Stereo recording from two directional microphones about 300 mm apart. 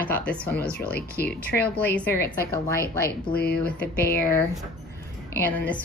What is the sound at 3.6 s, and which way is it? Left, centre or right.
Speech, centre.